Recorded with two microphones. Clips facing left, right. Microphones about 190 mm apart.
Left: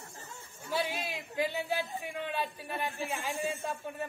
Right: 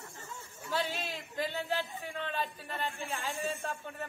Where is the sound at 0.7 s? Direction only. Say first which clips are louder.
Left 1 dB; 10° left (ahead or behind).